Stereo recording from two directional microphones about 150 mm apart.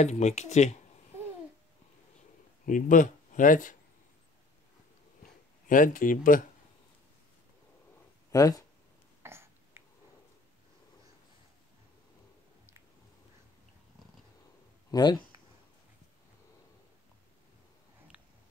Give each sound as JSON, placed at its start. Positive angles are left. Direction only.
{"t": 0.0, "sound": "speech", "side_deg": 50}
{"t": 2.6, "sound": "speech", "side_deg": 60}
{"t": 5.7, "sound": "speech", "side_deg": 65}
{"t": 8.3, "sound": "speech", "side_deg": 25}
{"t": 9.2, "sound": "a sound", "side_deg": -15}
{"t": 14.9, "sound": "speech", "side_deg": 25}